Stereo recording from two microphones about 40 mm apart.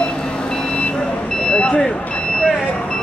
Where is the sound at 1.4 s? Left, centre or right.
Left.